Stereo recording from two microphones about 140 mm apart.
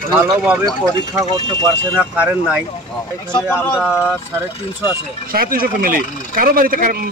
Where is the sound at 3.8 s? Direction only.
5° right (ahead or behind).